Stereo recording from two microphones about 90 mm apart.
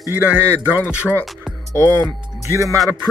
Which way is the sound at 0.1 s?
20° right (ahead or behind).